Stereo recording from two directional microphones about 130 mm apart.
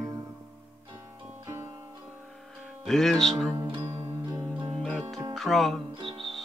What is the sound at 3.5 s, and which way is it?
Music, 45° right (ahead or behind).